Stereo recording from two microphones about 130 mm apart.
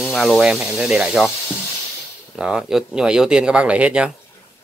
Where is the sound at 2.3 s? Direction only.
5° right (ahead or behind).